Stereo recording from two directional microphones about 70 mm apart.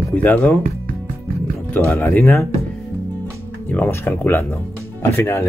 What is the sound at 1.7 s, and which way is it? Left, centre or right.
Speech, left.